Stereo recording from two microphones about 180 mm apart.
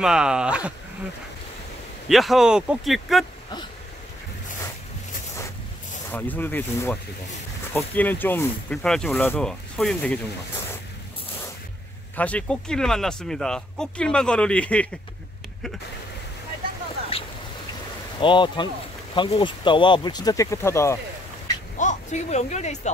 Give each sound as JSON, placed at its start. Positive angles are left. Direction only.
{"t": 0.0, "sound": "speech", "side_deg": -5}
{"t": 2.0, "sound": "speech", "side_deg": 0}
{"t": 6.1, "sound": "speech", "side_deg": 10}
{"t": 12.2, "sound": "speech", "side_deg": 5}
{"t": 18.2, "sound": "speech", "side_deg": 25}
{"t": 21.7, "sound": "speech", "side_deg": 40}